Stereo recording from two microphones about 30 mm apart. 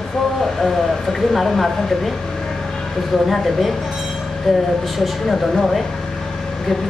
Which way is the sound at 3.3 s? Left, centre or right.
Centre.